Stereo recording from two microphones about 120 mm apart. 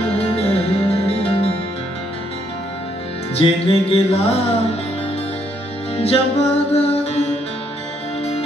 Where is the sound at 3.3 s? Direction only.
55° left (ahead or behind).